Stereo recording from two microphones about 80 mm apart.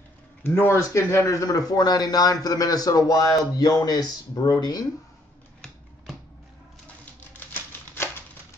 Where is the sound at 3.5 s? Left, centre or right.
Left.